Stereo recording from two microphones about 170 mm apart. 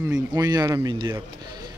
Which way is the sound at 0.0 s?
20° right (ahead or behind).